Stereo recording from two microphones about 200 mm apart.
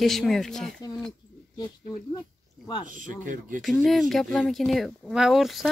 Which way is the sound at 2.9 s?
40° right (ahead or behind).